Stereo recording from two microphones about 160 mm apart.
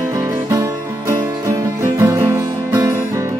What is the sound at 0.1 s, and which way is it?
Music, 20° right (ahead or behind).